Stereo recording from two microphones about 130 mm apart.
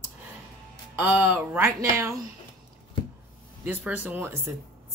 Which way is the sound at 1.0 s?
10° right (ahead or behind).